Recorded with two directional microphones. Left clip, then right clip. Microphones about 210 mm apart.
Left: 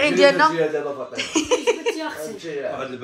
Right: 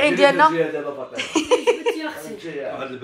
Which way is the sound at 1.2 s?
10° left (ahead or behind).